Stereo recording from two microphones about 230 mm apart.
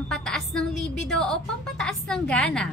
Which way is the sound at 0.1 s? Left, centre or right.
Centre.